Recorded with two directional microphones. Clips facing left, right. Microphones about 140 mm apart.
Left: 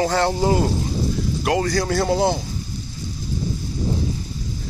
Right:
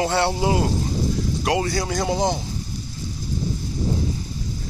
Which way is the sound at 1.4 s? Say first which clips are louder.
Left 3 dB; 25° right (ahead or behind).